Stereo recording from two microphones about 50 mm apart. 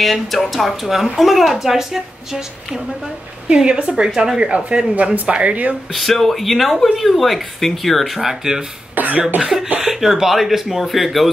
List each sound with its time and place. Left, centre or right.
0.0 s speech: centre
3.4 s speech: right
4.1 s speech: centre
4.6 s speech: right
5.9 s speech: centre
8.9 s cough: right
9.4 s speech: centre